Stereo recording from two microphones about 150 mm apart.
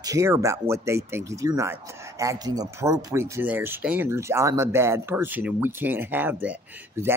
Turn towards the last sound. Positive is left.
turn(degrees=-15)  # may be behind; listen again after turning